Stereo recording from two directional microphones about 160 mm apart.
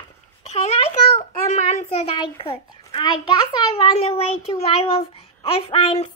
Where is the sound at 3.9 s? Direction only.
40° left (ahead or behind).